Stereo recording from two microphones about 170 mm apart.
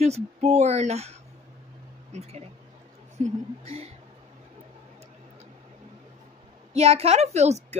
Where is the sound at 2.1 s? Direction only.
40° right (ahead or behind).